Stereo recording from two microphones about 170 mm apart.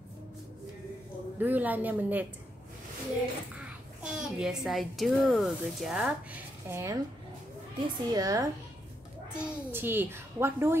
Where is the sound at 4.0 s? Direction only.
5° right (ahead or behind).